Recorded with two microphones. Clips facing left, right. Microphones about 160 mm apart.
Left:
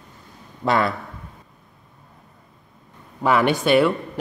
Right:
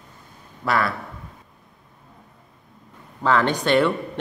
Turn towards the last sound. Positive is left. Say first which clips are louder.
# left 2 dB
turn(degrees=5)  # may be behind; listen again after turning